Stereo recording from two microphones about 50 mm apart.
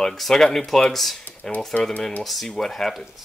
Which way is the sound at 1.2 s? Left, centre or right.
Left.